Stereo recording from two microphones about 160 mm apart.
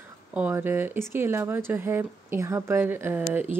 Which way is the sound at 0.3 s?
10° right (ahead or behind).